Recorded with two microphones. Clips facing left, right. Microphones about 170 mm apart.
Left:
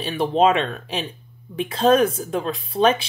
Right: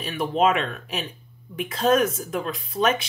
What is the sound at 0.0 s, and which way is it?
Speech, 30° left (ahead or behind).